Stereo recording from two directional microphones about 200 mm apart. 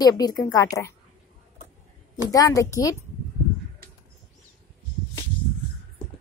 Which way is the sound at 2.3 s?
15° left (ahead or behind).